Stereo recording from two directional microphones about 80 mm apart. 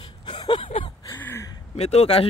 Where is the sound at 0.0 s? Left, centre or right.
Left.